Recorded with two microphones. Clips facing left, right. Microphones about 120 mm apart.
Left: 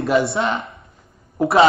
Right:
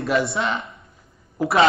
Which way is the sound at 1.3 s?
25° left (ahead or behind).